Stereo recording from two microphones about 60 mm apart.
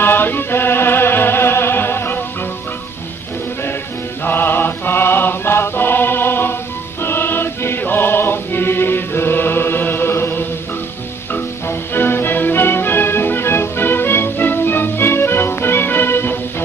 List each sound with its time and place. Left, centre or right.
0.0 s music: left
4.2 s music: left
11.6 s music: left